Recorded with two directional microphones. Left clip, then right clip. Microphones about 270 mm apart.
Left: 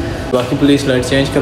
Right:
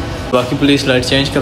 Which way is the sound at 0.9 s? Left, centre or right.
Centre.